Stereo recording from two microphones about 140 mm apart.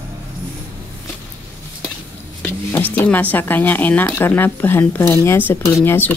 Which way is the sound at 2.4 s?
15° left (ahead or behind).